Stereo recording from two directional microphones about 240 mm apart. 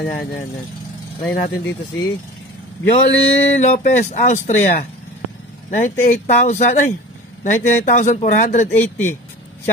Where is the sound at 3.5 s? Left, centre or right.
Left.